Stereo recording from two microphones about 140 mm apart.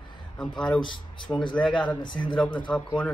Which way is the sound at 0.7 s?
35° left (ahead or behind).